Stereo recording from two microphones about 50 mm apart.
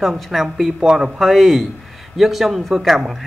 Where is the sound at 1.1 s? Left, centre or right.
Centre.